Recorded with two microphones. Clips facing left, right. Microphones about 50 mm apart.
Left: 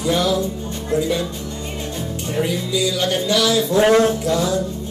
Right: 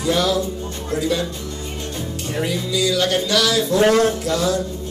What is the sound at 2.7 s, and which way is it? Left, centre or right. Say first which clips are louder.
Music: right 5 dB; centre.